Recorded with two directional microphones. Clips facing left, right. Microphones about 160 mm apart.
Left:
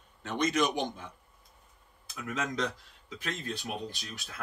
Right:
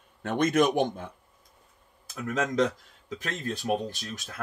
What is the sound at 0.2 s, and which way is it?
Speech, 55° right (ahead or behind).